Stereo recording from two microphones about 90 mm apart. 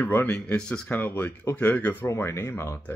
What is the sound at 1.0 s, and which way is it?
Speech, 25° left (ahead or behind).